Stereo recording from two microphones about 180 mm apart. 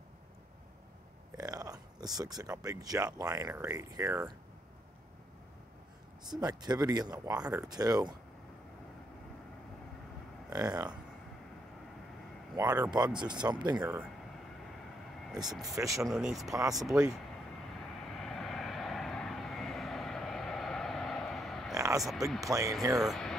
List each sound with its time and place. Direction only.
1.3 s speech: 20° right (ahead or behind)
6.2 s speech: 25° right (ahead or behind)
10.5 s speech: 20° right (ahead or behind)
12.6 s speech: 20° right (ahead or behind)
15.6 s speech: 20° right (ahead or behind)
16.0 s speech: 5° right (ahead or behind)
16.4 s speech: 20° right (ahead or behind)
16.7 s speech: centre (ahead or behind)
18.1 s vehicle: centre (ahead or behind)
21.7 s a sound: 20° right (ahead or behind)
22.4 s speech: 20° right (ahead or behind)
22.9 s speech: centre (ahead or behind)